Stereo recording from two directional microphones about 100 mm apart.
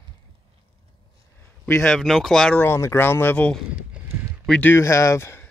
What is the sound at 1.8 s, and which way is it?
Speech, 5° left (ahead or behind).